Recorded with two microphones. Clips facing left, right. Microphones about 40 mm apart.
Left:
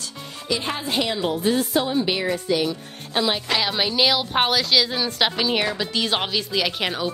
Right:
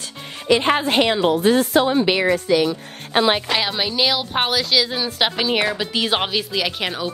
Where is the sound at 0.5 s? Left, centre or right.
Right.